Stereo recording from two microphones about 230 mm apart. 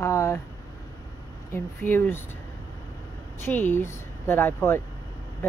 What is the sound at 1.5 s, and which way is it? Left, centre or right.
Speech, centre.